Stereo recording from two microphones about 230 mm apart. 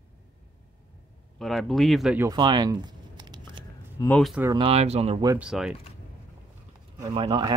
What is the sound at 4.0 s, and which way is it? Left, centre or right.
Speech, centre.